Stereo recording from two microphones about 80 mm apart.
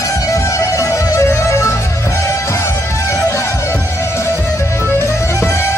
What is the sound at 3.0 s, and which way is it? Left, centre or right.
Music, left.